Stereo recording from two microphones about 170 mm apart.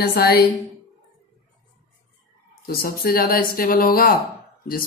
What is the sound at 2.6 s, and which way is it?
Speech, 60° left (ahead or behind).